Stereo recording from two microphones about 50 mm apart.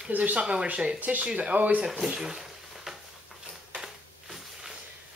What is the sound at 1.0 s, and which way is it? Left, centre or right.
Speech, right.